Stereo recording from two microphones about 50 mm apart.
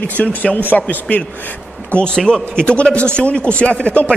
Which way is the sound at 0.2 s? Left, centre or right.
Left.